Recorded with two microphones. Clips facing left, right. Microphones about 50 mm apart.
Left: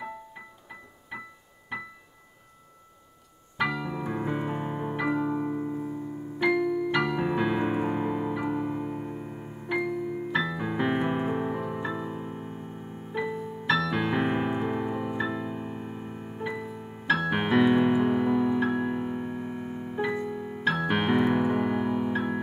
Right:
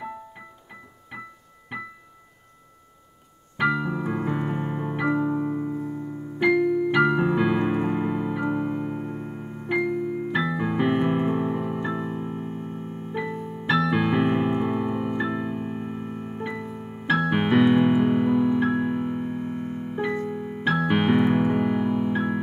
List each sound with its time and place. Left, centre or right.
1.7 s music: centre
3.5 s keyboard: centre
4.4 s piano: centre
5.4 s music: centre
6.4 s electric piano: centre
9.8 s keyboard: centre
11.9 s music: centre
16.4 s music: centre
16.7 s piano: centre
20.2 s electric piano: centre
20.6 s piano: centre